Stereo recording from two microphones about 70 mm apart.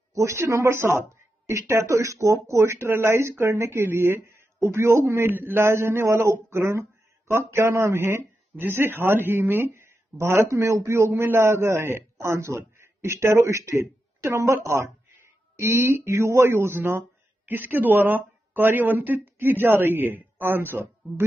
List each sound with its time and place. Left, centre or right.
0.1 s speech: right